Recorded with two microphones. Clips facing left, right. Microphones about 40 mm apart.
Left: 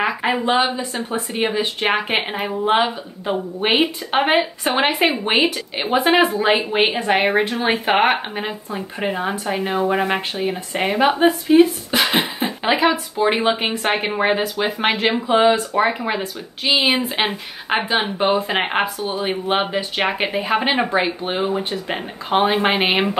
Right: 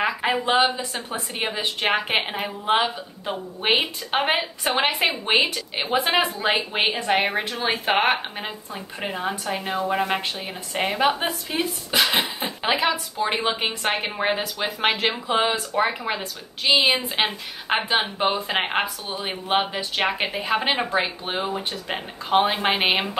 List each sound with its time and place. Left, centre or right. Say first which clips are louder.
0.0 s speech: left 3 dB; centre
14.8 s speech: left 2 dB; centre
15.5 s speech: left 5 dB; centre
17.7 s speech: left 3 dB; centre
18.2 s speech: left 4 dB; centre